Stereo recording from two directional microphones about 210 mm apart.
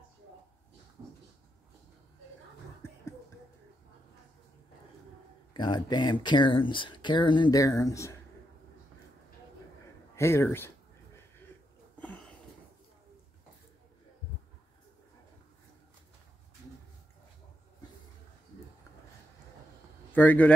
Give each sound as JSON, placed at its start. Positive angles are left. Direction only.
{"t": 5.5, "sound": "speech", "side_deg": 20}
{"t": 10.1, "sound": "speech", "side_deg": 10}
{"t": 12.0, "sound": "sniff", "side_deg": 5}
{"t": 20.1, "sound": "speech", "side_deg": 10}